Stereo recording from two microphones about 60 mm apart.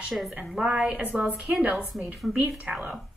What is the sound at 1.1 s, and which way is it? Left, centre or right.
A woman's voice, centre.